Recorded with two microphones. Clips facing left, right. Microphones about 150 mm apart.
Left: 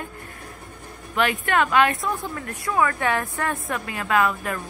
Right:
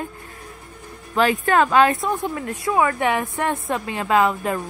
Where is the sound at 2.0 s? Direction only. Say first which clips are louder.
Right 4 dB; 20° right (ahead or behind).